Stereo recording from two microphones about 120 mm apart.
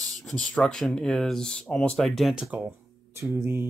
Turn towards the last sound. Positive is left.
turn(degrees=-20)  # may be behind; listen again after turning